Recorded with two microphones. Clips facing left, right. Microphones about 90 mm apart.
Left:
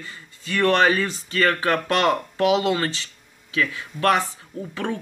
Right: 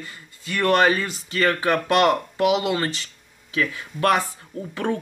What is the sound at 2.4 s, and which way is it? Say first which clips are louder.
Speech: left 1 dB; 35° left (ahead or behind).